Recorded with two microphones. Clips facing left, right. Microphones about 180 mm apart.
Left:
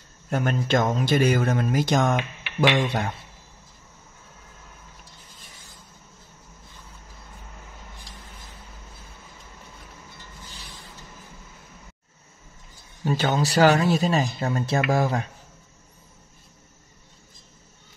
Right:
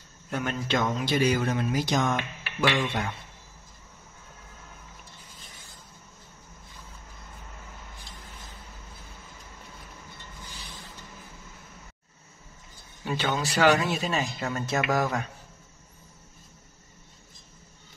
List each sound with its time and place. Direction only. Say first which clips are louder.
0.3 s speech: left 5 dB; 45° left (ahead or behind)
2.8 s speech: left 4 dB; 35° left (ahead or behind)
13.0 s speech: left 5 dB; 40° left (ahead or behind)